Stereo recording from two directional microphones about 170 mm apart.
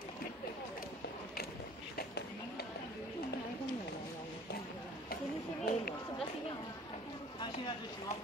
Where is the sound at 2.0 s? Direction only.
70° left (ahead or behind).